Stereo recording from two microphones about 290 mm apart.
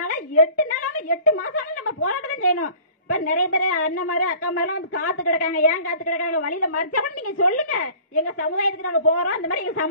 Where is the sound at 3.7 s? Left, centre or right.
Left.